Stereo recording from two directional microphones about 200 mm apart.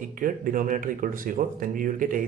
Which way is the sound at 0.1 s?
45° right (ahead or behind).